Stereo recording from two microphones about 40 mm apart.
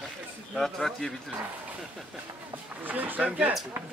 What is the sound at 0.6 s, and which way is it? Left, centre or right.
Speech, centre.